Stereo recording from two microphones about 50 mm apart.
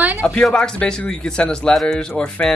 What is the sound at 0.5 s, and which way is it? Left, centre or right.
Speech, centre.